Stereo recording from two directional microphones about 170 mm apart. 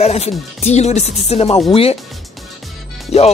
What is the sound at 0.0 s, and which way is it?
Speech, 40° left (ahead or behind).